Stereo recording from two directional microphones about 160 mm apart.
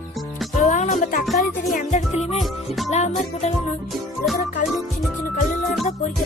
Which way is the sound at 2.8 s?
45° left (ahead or behind).